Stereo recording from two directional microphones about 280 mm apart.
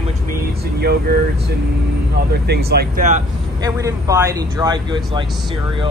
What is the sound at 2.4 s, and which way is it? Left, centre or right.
Speech, right.